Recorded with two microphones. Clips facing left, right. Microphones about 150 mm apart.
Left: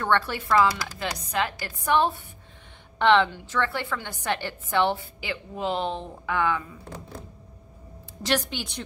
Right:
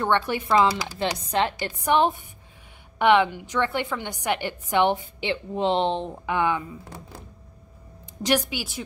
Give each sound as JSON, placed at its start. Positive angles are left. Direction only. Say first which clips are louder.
{"t": 0.0, "sound": "a woman's voice", "louder": "right 2 dB", "side_deg": -15}
{"t": 8.2, "sound": "a woman's voice", "louder": "right 3 dB", "side_deg": -15}